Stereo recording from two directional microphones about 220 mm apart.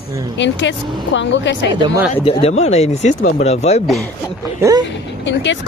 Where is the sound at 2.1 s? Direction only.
25° left (ahead or behind).